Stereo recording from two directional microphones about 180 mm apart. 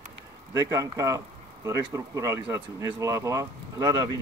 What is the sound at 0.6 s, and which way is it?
Speech, 20° right (ahead or behind).